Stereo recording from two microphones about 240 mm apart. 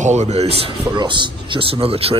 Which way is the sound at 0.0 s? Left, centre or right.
Right.